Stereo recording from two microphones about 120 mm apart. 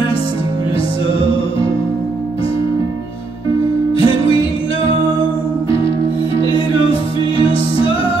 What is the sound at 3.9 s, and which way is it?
Music, 50° left (ahead or behind).